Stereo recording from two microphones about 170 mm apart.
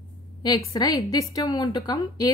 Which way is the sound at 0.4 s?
25° left (ahead or behind).